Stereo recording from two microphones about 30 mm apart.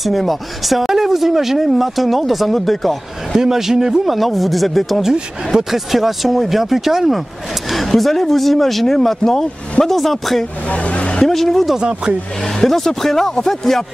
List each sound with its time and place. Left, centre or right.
0.0 s speech: centre
3.3 s a man's voice: centre
4.1 s speech: centre
5.5 s a man's voice: centre
5.9 s speech: centre
7.7 s speech: centre
10.7 s speech: left
11.2 s speech: centre
12.6 s speech: centre